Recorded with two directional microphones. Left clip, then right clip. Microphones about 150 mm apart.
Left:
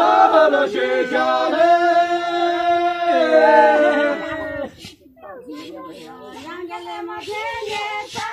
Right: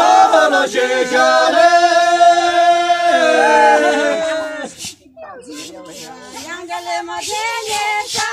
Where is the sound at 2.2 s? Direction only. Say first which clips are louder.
Right 8 dB; 15° right (ahead or behind).